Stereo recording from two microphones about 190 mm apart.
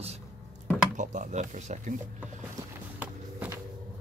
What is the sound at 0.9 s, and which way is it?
Speech, 40° right (ahead or behind).